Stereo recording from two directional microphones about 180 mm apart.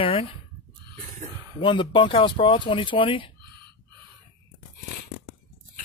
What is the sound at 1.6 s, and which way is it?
Speech, 30° left (ahead or behind).